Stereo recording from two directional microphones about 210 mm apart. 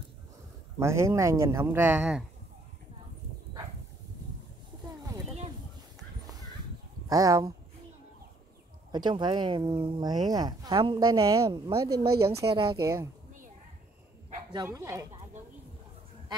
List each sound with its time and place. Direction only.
0.7 s a man's voice: 15° right (ahead or behind)
7.1 s a man's voice: 15° right (ahead or behind)
8.9 s speech: 20° right (ahead or behind)
11.9 s speech: 50° right (ahead or behind)
12.4 s speech: 25° right (ahead or behind)
12.7 s a man's voice: 15° right (ahead or behind)
14.5 s a man's voice: 20° right (ahead or behind)